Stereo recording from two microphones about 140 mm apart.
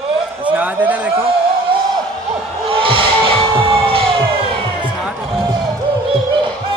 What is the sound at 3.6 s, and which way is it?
Siren, 40° right (ahead or behind).